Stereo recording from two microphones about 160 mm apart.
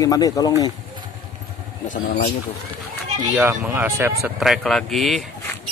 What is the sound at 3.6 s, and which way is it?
Speech, 15° right (ahead or behind).